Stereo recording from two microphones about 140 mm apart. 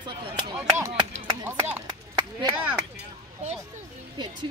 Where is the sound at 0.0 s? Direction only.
35° right (ahead or behind).